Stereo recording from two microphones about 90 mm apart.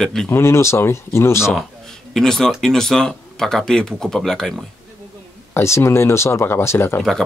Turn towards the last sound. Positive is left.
turn(degrees=5)  # may be behind; listen again after turning